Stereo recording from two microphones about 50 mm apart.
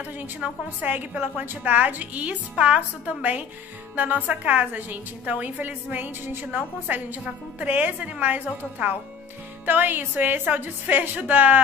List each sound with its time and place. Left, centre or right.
0.0 s a woman's voice: right